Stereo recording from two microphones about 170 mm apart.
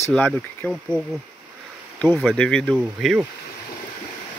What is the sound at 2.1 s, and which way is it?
Speech, 5° right (ahead or behind).